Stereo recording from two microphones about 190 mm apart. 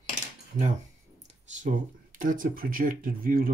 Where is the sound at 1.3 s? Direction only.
40° right (ahead or behind).